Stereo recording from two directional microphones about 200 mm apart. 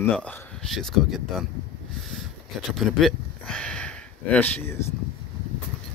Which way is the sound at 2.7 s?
Centre (ahead or behind).